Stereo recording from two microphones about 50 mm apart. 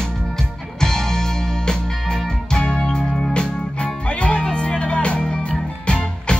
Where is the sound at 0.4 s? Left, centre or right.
Centre.